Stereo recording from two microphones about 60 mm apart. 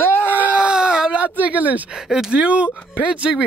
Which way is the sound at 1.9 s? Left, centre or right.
Centre.